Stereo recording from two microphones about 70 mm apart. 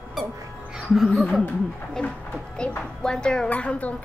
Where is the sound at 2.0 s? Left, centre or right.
Centre.